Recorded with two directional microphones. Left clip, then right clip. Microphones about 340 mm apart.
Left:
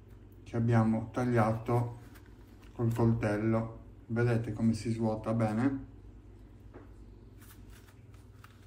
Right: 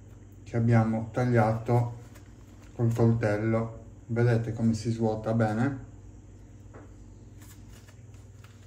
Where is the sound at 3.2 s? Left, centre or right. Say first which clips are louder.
Right 4 dB; centre.